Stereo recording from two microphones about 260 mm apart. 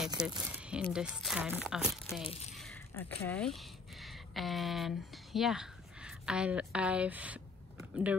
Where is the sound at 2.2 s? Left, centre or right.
Left.